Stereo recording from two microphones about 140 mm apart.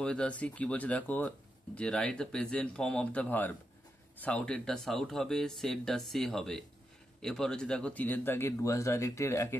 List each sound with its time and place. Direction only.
0.0 s speech: 10° left (ahead or behind)